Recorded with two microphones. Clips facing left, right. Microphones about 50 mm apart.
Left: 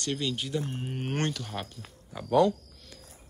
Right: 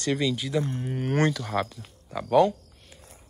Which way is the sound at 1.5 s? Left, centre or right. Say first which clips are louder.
Right 10 dB; right.